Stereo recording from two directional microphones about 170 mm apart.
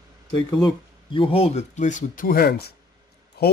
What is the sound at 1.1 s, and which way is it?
Speech, 35° left (ahead or behind).